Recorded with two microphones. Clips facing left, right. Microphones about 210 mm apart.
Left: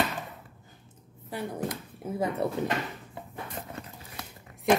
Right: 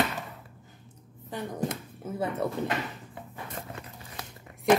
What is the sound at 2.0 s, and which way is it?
Speech, 15° left (ahead or behind).